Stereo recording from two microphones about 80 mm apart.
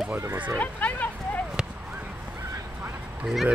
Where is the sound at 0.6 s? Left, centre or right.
Centre.